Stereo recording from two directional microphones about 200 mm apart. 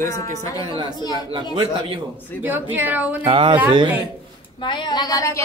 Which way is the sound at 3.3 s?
25° right (ahead or behind).